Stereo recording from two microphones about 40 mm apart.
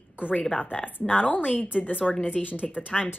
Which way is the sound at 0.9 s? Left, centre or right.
Left.